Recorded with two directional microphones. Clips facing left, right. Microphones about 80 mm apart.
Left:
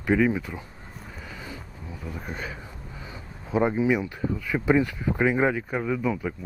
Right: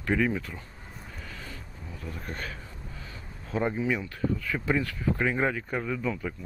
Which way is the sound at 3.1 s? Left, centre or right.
Centre.